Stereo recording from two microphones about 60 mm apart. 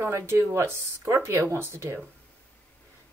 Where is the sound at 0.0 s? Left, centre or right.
Right.